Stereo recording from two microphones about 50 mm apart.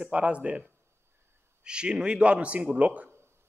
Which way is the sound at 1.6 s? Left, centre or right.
Centre.